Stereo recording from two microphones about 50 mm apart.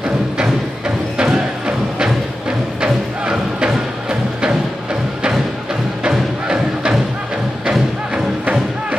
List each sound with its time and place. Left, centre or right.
0.4 s music: centre
6.0 s music: centre